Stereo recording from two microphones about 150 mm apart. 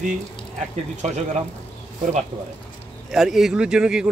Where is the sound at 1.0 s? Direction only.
50° right (ahead or behind).